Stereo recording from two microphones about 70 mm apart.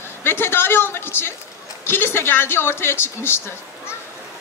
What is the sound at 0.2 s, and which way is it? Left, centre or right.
Speech, left.